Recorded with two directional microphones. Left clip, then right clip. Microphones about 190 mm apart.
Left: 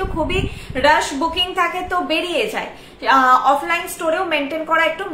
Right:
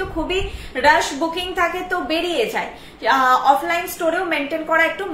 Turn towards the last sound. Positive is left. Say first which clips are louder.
# left 1 dB
turn(degrees=10)  # may be behind; listen again after turning